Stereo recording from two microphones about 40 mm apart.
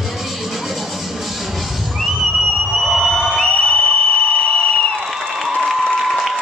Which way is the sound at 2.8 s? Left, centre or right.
Centre.